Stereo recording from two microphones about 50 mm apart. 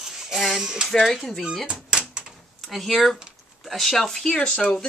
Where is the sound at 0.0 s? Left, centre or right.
Centre.